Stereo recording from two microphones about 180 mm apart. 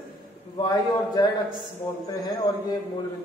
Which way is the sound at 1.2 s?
20° left (ahead or behind).